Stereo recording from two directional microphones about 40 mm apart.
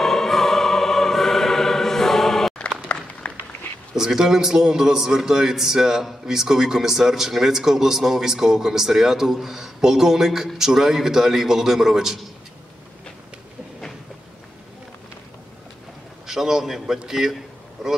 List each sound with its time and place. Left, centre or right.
0.0 s music: centre
2.9 s applause: left
3.9 s a man's voice: centre
16.3 s a man's voice: centre